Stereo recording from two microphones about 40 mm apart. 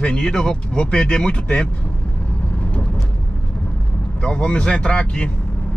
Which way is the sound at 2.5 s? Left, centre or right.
Left.